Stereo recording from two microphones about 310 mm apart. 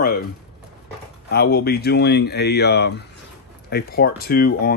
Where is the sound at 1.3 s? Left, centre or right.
Left.